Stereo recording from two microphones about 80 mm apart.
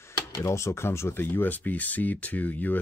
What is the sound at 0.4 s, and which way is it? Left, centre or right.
Speech, left.